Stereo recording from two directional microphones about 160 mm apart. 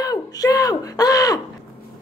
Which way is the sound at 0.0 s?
20° left (ahead or behind).